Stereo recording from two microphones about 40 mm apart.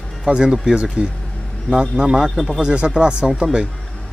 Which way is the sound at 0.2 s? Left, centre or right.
Right.